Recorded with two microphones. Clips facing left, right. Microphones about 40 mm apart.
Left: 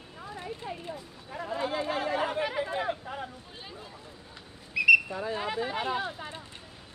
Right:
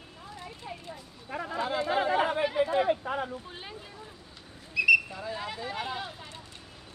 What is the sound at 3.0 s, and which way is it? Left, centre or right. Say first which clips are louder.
Speech: right 6 dB; right.